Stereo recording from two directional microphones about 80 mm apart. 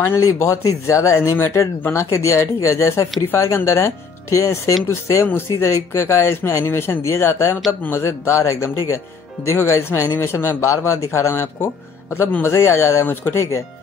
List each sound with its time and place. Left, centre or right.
0.0 s speech: left